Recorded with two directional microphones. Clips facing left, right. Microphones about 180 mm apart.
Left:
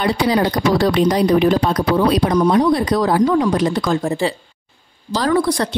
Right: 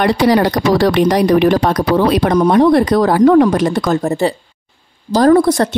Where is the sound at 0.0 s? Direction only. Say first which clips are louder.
Right 5 dB; 75° right (ahead or behind).